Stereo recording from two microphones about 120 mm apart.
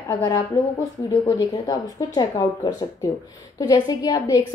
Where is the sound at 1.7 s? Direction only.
35° left (ahead or behind).